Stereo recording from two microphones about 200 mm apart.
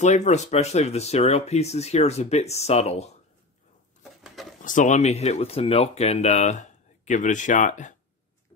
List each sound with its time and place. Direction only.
0.0 s speech: 35° left (ahead or behind)
4.0 s bird: centre (ahead or behind)
4.6 s speech: 40° left (ahead or behind)